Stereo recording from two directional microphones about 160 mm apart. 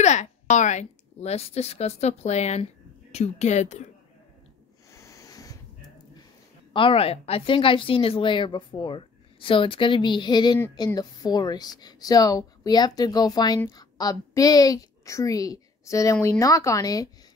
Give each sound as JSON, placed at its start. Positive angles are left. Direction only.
{"t": 0.0, "sound": "a woman's voice", "side_deg": 45}
{"t": 4.9, "sound": "a sound", "side_deg": 20}
{"t": 6.7, "sound": "a woman's voice", "side_deg": 35}